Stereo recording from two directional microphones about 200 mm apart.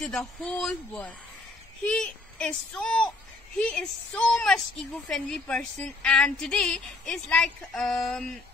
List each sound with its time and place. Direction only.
0.0 s a woman's voice: 5° left (ahead or behind)